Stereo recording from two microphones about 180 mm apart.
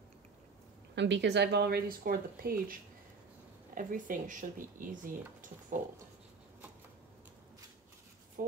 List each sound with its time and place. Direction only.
0.9 s speech: 80° right; by 5.8 s 45° right (ahead or behind)
8.4 s speech: 55° right (ahead or behind)